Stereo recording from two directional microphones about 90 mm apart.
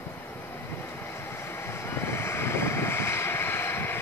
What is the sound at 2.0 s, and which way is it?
Vehicle, 30° left (ahead or behind).